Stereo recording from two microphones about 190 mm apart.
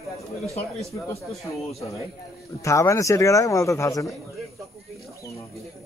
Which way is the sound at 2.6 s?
15° left (ahead or behind).